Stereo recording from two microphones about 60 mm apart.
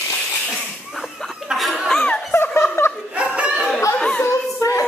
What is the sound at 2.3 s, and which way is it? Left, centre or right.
Laughter, left.